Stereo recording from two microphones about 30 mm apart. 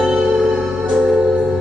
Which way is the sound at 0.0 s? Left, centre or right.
Right.